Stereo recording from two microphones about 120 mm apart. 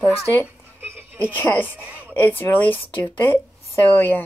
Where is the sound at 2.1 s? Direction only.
15° left (ahead or behind).